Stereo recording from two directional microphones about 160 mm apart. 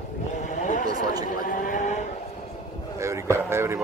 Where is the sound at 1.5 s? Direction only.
55° left (ahead or behind).